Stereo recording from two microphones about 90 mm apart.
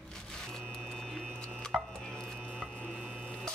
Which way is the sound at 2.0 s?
5° left (ahead or behind).